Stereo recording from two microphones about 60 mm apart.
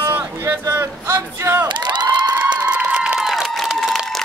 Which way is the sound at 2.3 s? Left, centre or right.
Right.